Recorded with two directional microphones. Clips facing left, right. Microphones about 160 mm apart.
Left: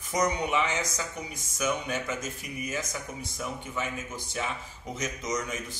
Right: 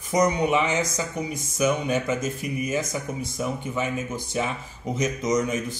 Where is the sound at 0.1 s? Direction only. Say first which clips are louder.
Right 6 dB; 15° right (ahead or behind).